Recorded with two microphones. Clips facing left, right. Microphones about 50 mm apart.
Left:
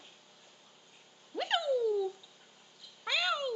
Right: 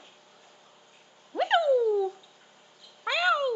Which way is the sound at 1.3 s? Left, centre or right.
Centre.